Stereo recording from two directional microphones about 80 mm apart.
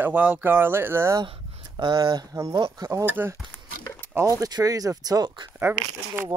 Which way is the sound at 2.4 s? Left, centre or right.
Right.